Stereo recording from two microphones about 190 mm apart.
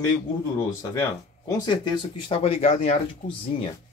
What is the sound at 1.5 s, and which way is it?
Speech, 25° left (ahead or behind).